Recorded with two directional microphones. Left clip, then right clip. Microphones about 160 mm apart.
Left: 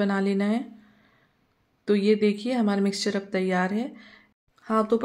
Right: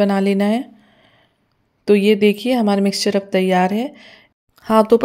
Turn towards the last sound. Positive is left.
turn(degrees=-50)  # may be behind; listen again after turning